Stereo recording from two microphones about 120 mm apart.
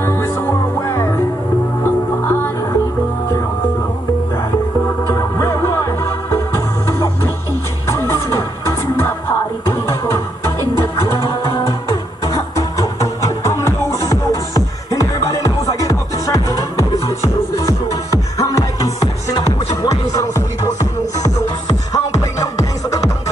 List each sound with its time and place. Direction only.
0.0 s music: 20° left (ahead or behind)
5.1 s music: 25° left (ahead or behind)
7.9 s music: 25° left (ahead or behind)
12.3 s music: 30° left (ahead or behind)
21.9 s music: 30° left (ahead or behind)